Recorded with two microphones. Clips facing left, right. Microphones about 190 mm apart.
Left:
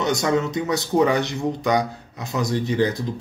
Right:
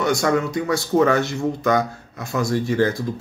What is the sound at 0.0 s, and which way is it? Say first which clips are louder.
Speech: right 1 dB; 20° left (ahead or behind).